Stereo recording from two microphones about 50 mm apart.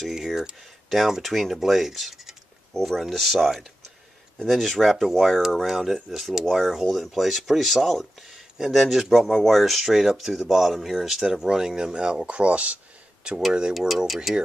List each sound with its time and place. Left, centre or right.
0.0 s speech: centre
11.2 s speech: centre
13.5 s speech: centre
13.7 s speech: centre